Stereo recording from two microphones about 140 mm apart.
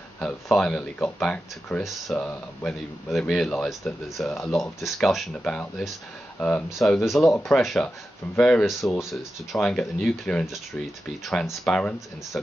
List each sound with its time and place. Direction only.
0.2 s speech: 5° left (ahead or behind)
1.8 s speech: centre (ahead or behind)
2.1 s speech: 10° left (ahead or behind)
4.3 s speech: 20° left (ahead or behind)
4.6 s speech: centre (ahead or behind)